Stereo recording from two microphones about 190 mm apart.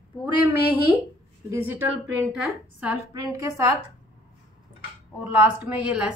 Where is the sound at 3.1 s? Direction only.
20° right (ahead or behind).